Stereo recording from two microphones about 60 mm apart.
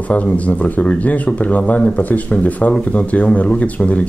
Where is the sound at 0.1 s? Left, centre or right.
Left.